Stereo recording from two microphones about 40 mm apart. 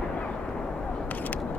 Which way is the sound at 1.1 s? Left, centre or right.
Left.